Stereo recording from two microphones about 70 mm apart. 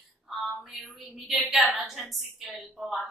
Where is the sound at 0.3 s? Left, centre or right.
Centre.